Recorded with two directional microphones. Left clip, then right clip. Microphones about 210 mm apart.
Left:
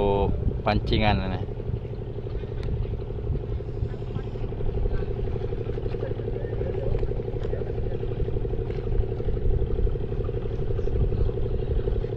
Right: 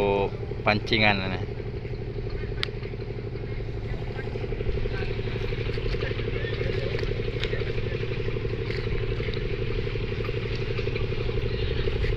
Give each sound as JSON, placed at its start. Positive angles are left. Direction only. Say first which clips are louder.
{"t": 0.0, "sound": "vehicle", "louder": "even", "side_deg": 15}